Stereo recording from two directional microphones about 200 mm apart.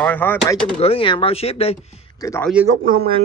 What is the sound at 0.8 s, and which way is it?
Speech, 30° left (ahead or behind).